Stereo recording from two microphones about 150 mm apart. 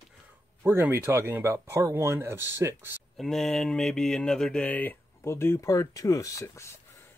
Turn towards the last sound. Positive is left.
turn(degrees=20)  # may be behind; listen again after turning